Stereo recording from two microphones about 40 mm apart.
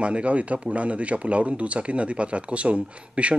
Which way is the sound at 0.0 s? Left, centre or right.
Right.